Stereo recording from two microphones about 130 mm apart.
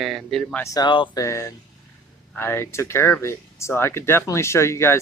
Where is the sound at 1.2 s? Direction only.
20° left (ahead or behind).